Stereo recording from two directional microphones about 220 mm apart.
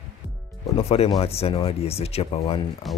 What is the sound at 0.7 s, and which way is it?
Speech, 25° left (ahead or behind).